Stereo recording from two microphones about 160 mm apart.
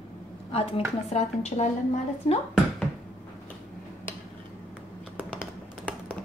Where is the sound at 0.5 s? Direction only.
40° left (ahead or behind).